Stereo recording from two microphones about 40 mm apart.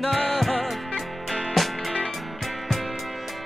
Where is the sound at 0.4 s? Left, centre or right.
Centre.